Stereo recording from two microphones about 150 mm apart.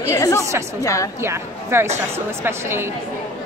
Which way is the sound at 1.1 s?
15° right (ahead or behind).